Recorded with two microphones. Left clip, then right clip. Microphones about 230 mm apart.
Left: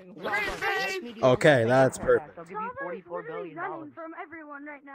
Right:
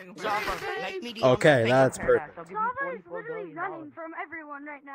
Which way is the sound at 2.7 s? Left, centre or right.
Right.